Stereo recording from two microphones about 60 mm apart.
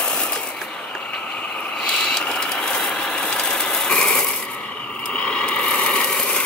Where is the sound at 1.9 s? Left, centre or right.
Centre.